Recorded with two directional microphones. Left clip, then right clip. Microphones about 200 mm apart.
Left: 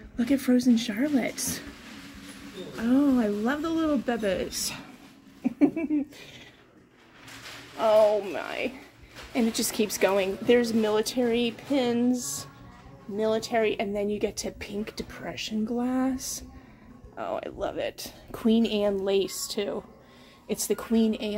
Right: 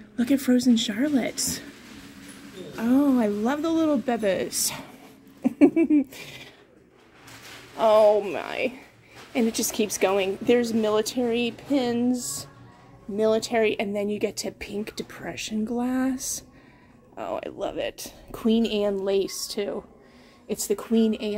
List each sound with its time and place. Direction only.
0.1 s a woman's voice: 20° right (ahead or behind)
2.7 s a woman's voice: 20° right (ahead or behind)
5.4 s a sound: 40° right (ahead or behind)
7.7 s a woman's voice: 25° right (ahead or behind)
9.3 s a woman's voice: 10° right (ahead or behind)